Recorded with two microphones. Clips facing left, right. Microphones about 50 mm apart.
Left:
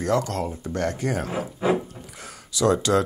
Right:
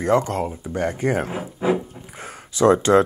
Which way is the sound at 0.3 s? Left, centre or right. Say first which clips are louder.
Right 3 dB; centre.